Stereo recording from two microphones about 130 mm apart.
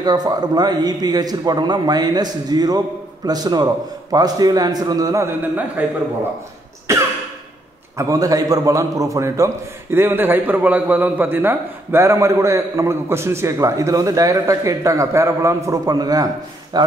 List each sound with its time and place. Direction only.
0.0 s a man's voice: 30° right (ahead or behind)
5.8 s speech: 10° right (ahead or behind)
8.0 s a man's voice: 25° right (ahead or behind)